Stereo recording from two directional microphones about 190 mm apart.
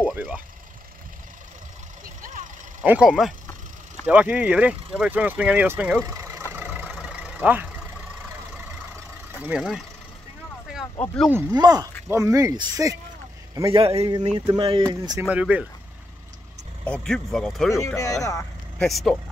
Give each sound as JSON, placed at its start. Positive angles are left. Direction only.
{"t": 0.1, "sound": "speech", "side_deg": -10}
{"t": 2.2, "sound": "vehicle", "side_deg": -40}
{"t": 2.8, "sound": "speech", "side_deg": -5}
{"t": 6.0, "sound": "vehicle", "side_deg": -15}
{"t": 9.4, "sound": "speech", "side_deg": -5}
{"t": 11.3, "sound": "speech", "side_deg": -20}
{"t": 13.7, "sound": "a man's voice", "side_deg": -30}
{"t": 16.8, "sound": "speech", "side_deg": 5}
{"t": 17.6, "sound": "speech", "side_deg": 15}
{"t": 18.8, "sound": "speech", "side_deg": 0}